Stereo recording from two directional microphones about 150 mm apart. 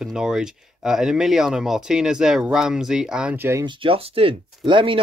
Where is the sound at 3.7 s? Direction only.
40° right (ahead or behind).